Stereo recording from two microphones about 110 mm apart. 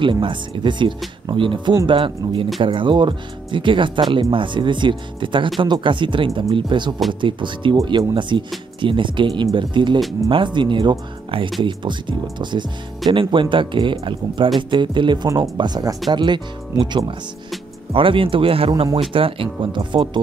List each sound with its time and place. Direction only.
0.0 s speech: 50° right (ahead or behind)
15.2 s speech: 30° right (ahead or behind)
15.5 s speech: 40° right (ahead or behind)
17.9 s speech: 55° right (ahead or behind)